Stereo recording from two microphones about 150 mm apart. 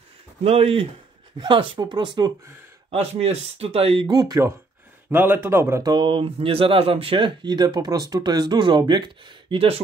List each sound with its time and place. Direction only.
0.4 s speech: 40° right (ahead or behind)
2.9 s speech: 40° right (ahead or behind)
4.1 s a man's voice: 25° right (ahead or behind)